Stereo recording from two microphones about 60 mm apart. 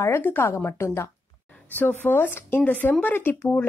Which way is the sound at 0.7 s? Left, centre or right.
Left.